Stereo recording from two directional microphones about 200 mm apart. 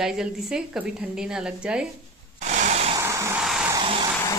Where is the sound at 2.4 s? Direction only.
35° right (ahead or behind).